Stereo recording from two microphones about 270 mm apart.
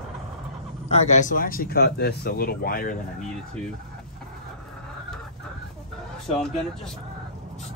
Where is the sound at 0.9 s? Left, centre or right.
Left.